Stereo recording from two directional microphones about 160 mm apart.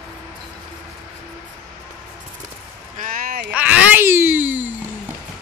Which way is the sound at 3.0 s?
60° right (ahead or behind).